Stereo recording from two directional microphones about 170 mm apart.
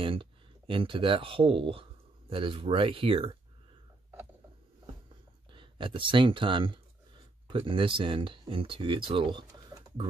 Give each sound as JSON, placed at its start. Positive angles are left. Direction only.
{"t": 0.0, "sound": "speech", "side_deg": -30}
{"t": 5.5, "sound": "speech", "side_deg": -30}